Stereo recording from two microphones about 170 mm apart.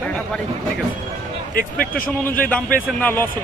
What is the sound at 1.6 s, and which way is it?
Speech, 60° left (ahead or behind).